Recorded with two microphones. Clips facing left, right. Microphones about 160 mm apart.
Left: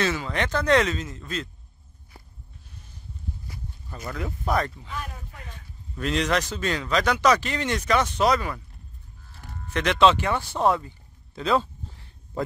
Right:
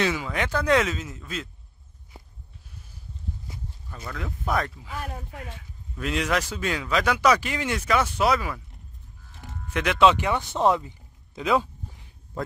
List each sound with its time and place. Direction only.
0.0 s speech: 10° right (ahead or behind)
3.9 s speech: 5° left (ahead or behind)
5.0 s speech: 50° right (ahead or behind)
5.9 s a man's voice: 5° right (ahead or behind)
9.3 s livestock: 20° right (ahead or behind)
9.7 s speech: 10° right (ahead or behind)
12.4 s speech: centre (ahead or behind)